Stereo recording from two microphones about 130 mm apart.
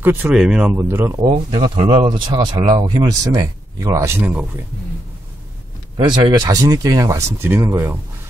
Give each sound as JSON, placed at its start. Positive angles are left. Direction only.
{"t": 0.0, "sound": "speech", "side_deg": -15}
{"t": 0.3, "sound": "speech", "side_deg": -5}
{"t": 0.7, "sound": "speech", "side_deg": -20}
{"t": 1.2, "sound": "speech", "side_deg": -45}
{"t": 5.9, "sound": "speech", "side_deg": -35}